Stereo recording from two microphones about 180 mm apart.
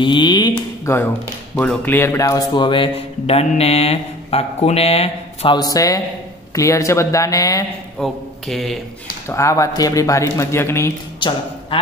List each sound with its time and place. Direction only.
0.0 s speech: 25° left (ahead or behind)
1.6 s speech: 10° left (ahead or behind); by 5.6 s 35° left (ahead or behind)
5.6 s a man's voice: 20° left (ahead or behind)
8.0 s speech: centre (ahead or behind)
9.3 s speech: 15° left (ahead or behind)
11.1 s speech: 25° left (ahead or behind)